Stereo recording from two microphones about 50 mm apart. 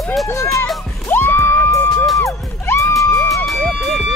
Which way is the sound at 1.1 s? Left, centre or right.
Left.